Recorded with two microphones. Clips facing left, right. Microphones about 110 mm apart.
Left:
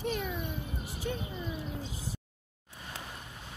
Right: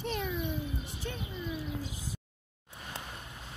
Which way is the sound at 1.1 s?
10° left (ahead or behind).